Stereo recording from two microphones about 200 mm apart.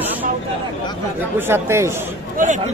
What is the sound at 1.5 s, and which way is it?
Speech, 15° right (ahead or behind).